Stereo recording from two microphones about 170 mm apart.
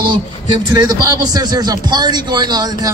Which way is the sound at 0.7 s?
20° right (ahead or behind).